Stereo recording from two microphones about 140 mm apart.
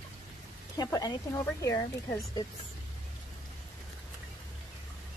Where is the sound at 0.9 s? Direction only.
25° left (ahead or behind).